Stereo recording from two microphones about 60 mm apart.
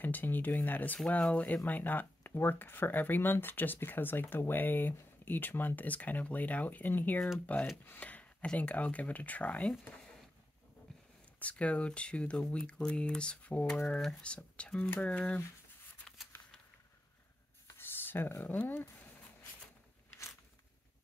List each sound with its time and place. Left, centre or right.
0.0 s speech: left
0.9 s speech: left
11.3 s speech: left
16.3 s a sound: left
17.7 s a sound: left
18.4 s speech: left